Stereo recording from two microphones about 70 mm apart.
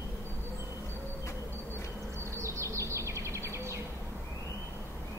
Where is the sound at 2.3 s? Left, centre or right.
Right.